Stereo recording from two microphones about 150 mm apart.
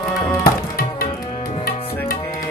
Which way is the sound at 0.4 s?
75° left (ahead or behind).